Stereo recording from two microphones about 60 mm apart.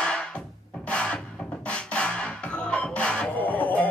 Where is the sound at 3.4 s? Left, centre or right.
Left.